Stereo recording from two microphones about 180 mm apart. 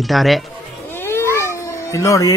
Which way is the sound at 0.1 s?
Centre (ahead or behind).